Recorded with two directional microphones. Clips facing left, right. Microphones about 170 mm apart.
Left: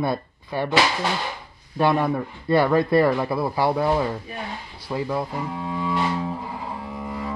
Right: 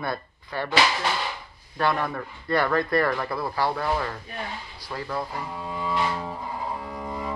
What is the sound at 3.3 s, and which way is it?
Speech, 20° left (ahead or behind).